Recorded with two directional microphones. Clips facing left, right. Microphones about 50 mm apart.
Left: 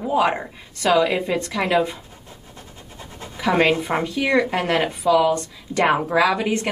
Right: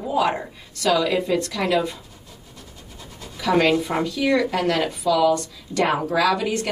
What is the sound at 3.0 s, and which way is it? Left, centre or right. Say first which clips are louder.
Speech: left 3 dB; left.